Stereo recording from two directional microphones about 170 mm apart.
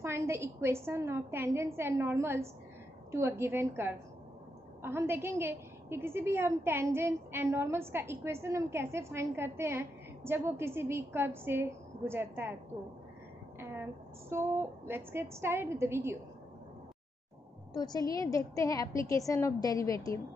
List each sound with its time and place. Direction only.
0.0 s a woman's voice: 15° right (ahead or behind)
13.6 s a woman's voice: 15° right (ahead or behind)
17.7 s a woman's voice: 25° left (ahead or behind)